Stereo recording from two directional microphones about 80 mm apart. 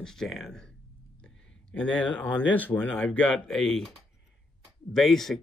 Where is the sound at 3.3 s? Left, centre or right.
Centre.